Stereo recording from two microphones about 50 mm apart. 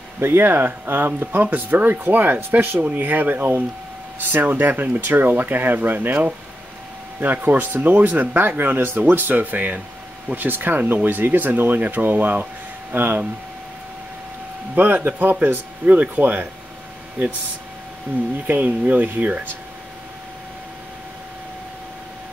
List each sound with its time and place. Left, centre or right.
0.2 s speech: right
14.8 s speech: right
18.5 s speech: right